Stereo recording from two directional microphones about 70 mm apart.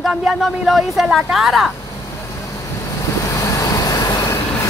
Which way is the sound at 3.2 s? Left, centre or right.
Left.